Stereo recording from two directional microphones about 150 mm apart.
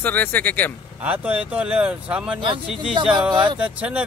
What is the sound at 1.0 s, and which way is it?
Speech, 10° right (ahead or behind).